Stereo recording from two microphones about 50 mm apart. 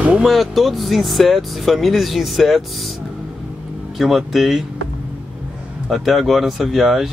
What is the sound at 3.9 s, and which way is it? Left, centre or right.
Speech, centre.